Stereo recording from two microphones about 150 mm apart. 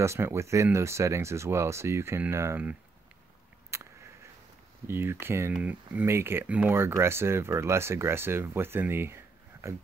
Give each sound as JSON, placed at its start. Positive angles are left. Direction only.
{"t": 0.0, "sound": "speech", "side_deg": -15}
{"t": 3.7, "sound": "a sound", "side_deg": -20}
{"t": 4.8, "sound": "speech", "side_deg": -15}